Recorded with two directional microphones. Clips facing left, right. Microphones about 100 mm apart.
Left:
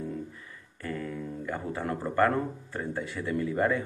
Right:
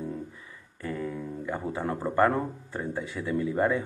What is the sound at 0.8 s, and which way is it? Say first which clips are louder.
A man's voice: right 2 dB; 10° right (ahead or behind).